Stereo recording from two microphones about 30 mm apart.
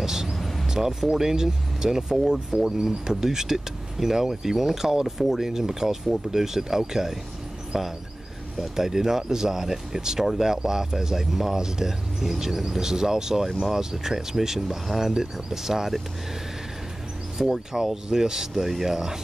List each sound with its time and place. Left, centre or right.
0.0 s a sound: centre
1.1 s speech: centre
17.4 s speech: centre